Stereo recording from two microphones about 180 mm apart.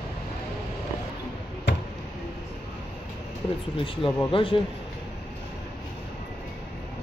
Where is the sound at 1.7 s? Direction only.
70° left (ahead or behind).